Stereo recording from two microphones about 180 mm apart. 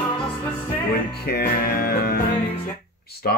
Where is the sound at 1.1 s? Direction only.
60° left (ahead or behind).